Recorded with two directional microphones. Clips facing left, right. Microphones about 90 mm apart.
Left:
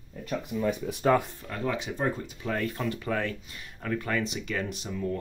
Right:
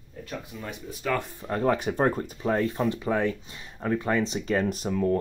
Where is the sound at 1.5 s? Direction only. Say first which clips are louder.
Right 7 dB; 40° right (ahead or behind).